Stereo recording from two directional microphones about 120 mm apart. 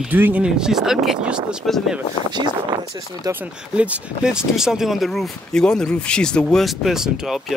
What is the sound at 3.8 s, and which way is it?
Speech, 10° right (ahead or behind).